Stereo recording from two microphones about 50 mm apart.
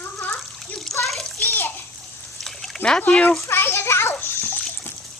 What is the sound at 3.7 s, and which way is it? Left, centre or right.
Splash, left.